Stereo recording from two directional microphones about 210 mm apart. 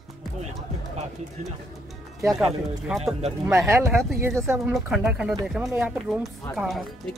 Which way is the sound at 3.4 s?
15° right (ahead or behind).